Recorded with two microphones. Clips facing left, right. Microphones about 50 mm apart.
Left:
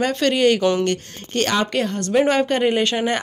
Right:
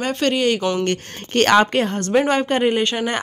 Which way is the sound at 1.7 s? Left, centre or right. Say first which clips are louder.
Right 2 dB; right.